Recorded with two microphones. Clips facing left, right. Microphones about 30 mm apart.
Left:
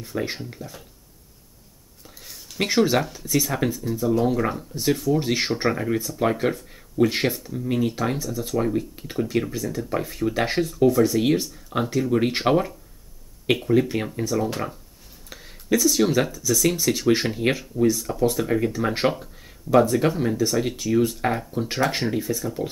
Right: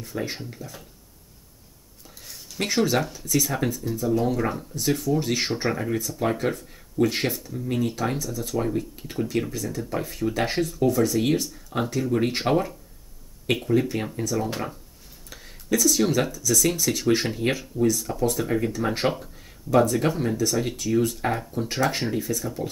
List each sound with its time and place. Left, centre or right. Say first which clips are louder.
0.1 s speech: left 3 dB; centre
0.5 s speech: left 1 dB; centre
2.0 s a sound: left 1 dB; centre
3.2 s speech: left 1 dB; centre
5.5 s speech: left 2 dB; left
6.2 s speech: left 3 dB; centre
15.3 s a sound: left 2 dB; centre
16.3 s speech: left 1 dB; centre
17.9 s speech: left 2 dB; centre